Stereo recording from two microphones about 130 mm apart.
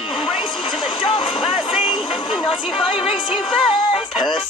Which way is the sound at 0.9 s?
40° left (ahead or behind).